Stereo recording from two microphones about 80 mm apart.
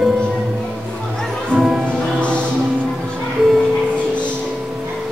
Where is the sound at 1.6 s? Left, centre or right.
Centre.